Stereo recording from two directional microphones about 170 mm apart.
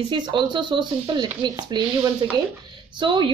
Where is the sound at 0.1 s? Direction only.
30° right (ahead or behind).